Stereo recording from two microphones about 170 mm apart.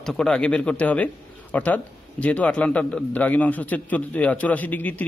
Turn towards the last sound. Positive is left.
turn(degrees=10)  # may be behind; listen again after turning